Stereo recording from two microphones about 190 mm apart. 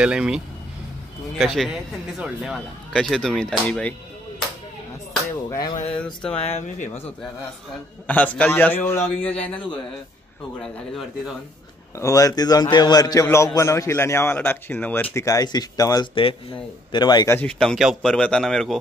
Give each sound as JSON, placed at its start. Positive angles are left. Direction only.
{"t": 0.0, "sound": "speech", "side_deg": -5}
{"t": 1.4, "sound": "speech", "side_deg": 0}
{"t": 5.7, "sound": "speech", "side_deg": 30}
{"t": 8.1, "sound": "a man's voice", "side_deg": 5}
{"t": 12.0, "sound": "a man's voice", "side_deg": 20}
{"t": 17.4, "sound": "speech", "side_deg": 5}